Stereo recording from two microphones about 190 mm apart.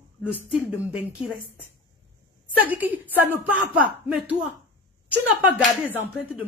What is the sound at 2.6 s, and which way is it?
Speech, 10° right (ahead or behind).